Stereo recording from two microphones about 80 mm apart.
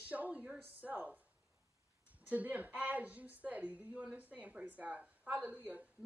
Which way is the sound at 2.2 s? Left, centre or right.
Centre.